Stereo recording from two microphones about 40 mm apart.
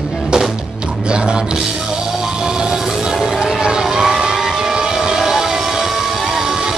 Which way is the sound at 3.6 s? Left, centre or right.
Centre.